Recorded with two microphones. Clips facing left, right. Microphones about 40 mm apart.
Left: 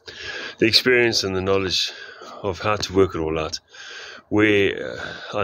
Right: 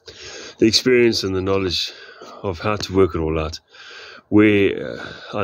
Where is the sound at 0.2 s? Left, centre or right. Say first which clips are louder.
Left 6 dB; centre.